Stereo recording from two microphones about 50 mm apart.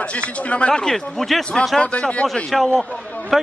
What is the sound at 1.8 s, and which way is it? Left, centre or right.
Speech, left.